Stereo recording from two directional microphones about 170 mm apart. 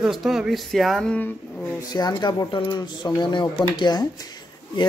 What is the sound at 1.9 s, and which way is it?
Speech, 25° left (ahead or behind).